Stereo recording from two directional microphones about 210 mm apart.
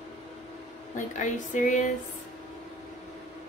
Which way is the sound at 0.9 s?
35° left (ahead or behind).